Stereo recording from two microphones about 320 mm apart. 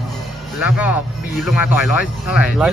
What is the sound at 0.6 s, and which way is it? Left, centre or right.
Speech, centre.